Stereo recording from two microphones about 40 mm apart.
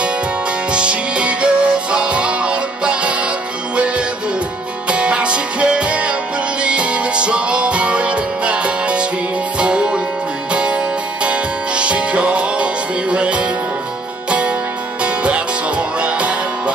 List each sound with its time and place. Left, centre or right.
0.7 s music: right
15.0 s music: right